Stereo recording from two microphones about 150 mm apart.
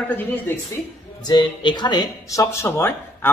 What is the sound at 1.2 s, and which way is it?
Speech, 30° left (ahead or behind).